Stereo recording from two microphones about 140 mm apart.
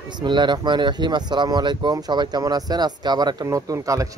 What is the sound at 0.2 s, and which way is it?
Speech, 30° right (ahead or behind).